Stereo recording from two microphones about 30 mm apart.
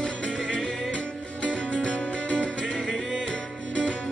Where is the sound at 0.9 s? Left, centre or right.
Left.